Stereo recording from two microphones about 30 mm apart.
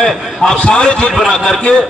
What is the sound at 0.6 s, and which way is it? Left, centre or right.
Speech, left.